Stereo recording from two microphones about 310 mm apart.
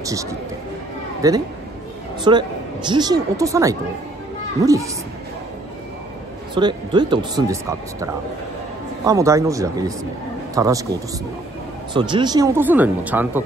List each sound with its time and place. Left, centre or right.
0.0 s speech: centre
6.5 s speech: centre
9.0 s speech: centre